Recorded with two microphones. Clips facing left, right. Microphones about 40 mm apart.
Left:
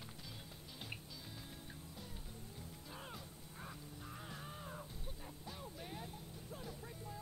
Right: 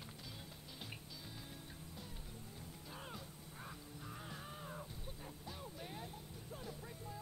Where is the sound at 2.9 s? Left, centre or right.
Centre.